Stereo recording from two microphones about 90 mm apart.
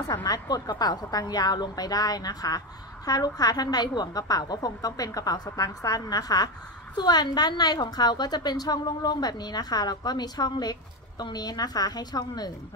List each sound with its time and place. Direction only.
0.1 s a woman's voice: 45° left (ahead or behind)